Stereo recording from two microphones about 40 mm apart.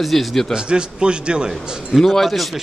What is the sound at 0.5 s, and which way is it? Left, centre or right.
A man's voice, right.